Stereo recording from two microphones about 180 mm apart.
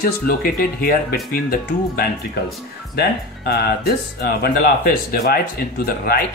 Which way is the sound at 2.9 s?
65° left (ahead or behind).